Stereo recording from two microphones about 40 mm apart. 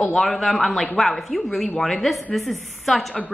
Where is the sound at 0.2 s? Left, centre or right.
Centre.